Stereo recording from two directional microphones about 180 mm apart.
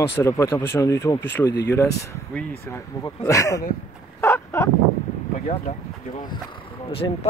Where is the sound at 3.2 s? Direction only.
20° left (ahead or behind).